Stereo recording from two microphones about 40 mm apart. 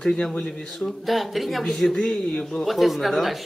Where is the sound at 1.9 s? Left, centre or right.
Centre.